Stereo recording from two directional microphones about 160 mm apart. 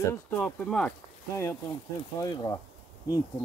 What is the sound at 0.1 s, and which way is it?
Speech, 10° left (ahead or behind).